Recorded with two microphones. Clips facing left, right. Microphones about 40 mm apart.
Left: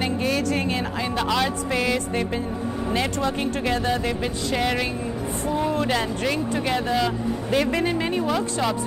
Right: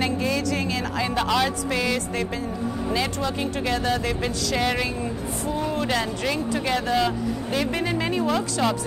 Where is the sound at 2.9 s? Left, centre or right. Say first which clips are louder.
Left 2 dB; left.